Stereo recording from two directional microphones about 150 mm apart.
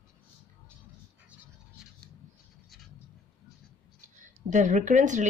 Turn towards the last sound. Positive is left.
turn(degrees=-55)  # may be behind; listen again after turning